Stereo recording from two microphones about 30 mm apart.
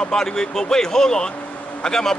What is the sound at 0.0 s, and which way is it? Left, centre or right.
Speech, centre.